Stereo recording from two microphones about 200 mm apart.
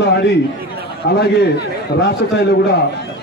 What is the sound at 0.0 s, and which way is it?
A man's voice, 55° left (ahead or behind).